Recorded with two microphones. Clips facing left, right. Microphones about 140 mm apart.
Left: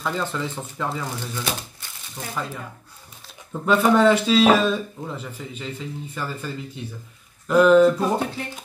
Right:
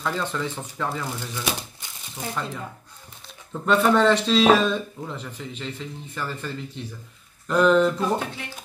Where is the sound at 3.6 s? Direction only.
10° left (ahead or behind).